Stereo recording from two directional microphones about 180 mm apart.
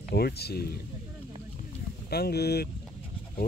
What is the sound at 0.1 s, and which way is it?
Speech, 60° left (ahead or behind).